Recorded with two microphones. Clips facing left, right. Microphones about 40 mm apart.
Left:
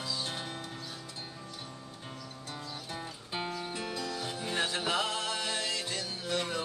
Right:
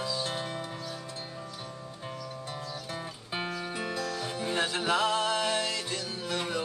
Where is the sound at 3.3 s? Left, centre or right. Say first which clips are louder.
Right 2 dB; centre.